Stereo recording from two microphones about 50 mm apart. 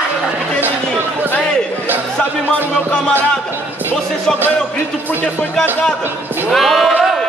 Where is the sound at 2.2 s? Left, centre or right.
Left.